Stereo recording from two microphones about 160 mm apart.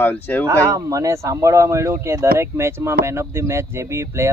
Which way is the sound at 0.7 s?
20° right (ahead or behind).